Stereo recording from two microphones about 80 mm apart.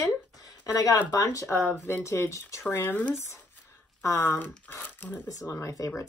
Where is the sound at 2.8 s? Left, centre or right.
Centre.